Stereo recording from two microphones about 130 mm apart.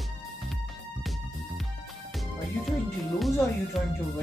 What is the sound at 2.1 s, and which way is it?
Speech, centre (ahead or behind).